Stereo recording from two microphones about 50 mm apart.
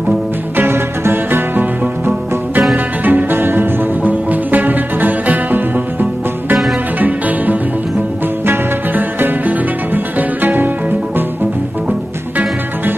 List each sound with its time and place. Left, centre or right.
0.6 s music: right
3.0 s music: right
4.0 s music: right
8.9 s music: right